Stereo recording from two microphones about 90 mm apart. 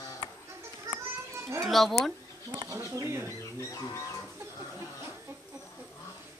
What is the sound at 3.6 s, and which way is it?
Speech, 40° left (ahead or behind).